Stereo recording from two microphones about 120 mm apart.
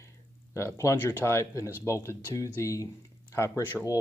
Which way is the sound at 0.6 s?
25° left (ahead or behind).